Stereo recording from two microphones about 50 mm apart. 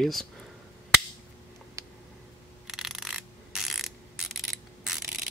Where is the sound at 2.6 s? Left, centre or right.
Centre.